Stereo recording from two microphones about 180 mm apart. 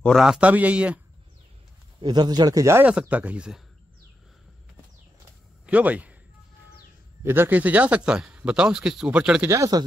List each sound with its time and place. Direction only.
0.0 s speech: centre (ahead or behind)
2.0 s speech: 25° right (ahead or behind); by 3.6 s 5° right (ahead or behind)
5.7 s a man's voice: 10° right (ahead or behind)
7.2 s speech: 10° right (ahead or behind)
9.5 s speech: 20° right (ahead or behind)